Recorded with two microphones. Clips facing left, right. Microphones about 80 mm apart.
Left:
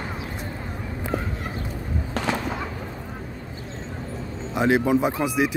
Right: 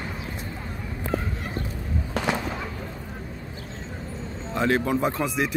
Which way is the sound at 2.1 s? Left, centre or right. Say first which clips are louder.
Even; centre.